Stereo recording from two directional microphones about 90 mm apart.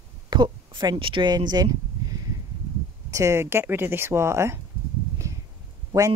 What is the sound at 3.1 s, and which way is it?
Speech, 35° right (ahead or behind).